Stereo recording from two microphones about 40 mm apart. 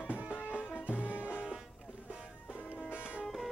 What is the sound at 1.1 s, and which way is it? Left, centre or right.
Music, right.